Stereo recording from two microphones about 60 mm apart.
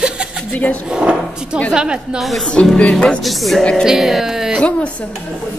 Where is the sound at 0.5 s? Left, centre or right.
Left.